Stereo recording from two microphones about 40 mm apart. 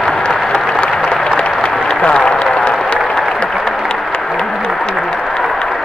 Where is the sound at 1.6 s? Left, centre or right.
Centre.